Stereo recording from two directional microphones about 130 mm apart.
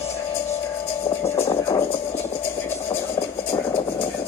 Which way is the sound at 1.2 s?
20° left (ahead or behind).